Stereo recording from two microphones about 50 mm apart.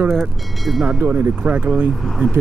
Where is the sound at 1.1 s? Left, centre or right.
Right.